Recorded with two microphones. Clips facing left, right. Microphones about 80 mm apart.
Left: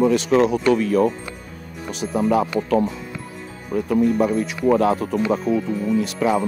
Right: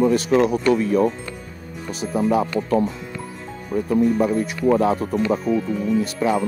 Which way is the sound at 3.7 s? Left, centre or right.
Centre.